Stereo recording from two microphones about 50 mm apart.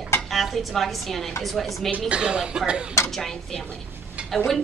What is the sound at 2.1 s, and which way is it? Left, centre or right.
Speech, centre.